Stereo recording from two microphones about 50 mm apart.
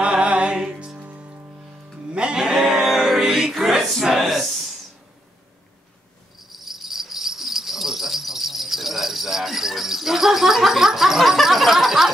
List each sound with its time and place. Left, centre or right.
0.0 s music: right; by 3.9 s centre
4.2 s a sound: centre
6.5 s insect: centre